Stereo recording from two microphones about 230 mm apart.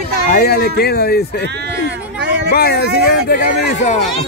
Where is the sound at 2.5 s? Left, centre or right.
Left.